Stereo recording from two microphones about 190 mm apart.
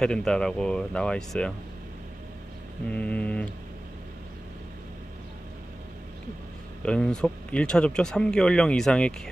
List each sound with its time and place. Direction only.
0.0 s speech: 5° left (ahead or behind)
2.9 s speech: 5° left (ahead or behind)
6.8 s speech: 5° left (ahead or behind)